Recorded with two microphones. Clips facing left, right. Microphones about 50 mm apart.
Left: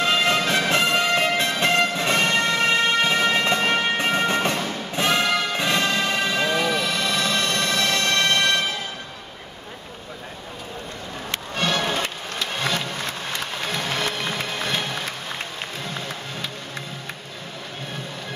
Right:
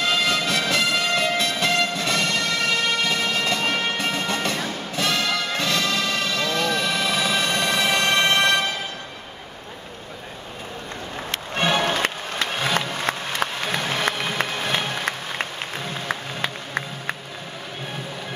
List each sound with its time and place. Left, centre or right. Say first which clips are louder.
0.0 s music: left 2 dB; left
6.8 s music: right 1 dB; centre; by 8.6 s right
11.5 s music: right 2 dB; centre
13.7 s music: right 2 dB; centre